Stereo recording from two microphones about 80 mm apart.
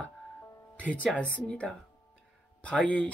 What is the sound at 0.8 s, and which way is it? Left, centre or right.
Speech, centre.